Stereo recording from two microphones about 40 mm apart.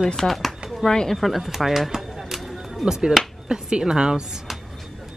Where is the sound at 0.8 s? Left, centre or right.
Centre.